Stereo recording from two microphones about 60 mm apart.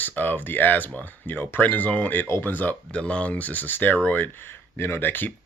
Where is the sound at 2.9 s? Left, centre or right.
Centre.